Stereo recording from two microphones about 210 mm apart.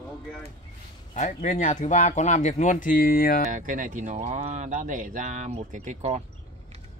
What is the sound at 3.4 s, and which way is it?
Speech, 40° right (ahead or behind).